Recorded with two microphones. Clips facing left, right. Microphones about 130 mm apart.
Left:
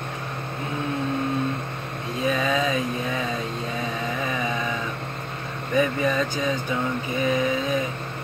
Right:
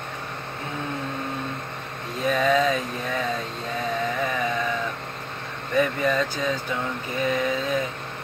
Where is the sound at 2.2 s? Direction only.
10° left (ahead or behind).